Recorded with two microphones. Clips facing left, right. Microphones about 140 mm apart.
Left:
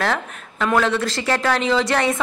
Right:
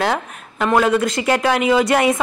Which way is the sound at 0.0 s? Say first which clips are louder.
Right 2 dB; 5° right (ahead or behind).